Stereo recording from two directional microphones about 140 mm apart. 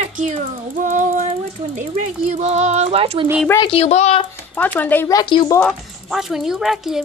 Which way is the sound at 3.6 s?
45° left (ahead or behind).